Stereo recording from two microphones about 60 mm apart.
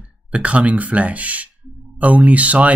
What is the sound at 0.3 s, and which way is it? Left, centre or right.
Speech, right.